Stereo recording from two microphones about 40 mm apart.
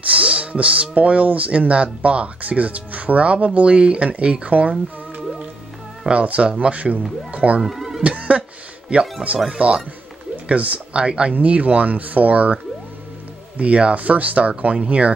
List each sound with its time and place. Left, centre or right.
0.1 s speech: right
7.6 s music: centre
8.0 s cough: right
9.5 s speech: right
13.6 s speech: right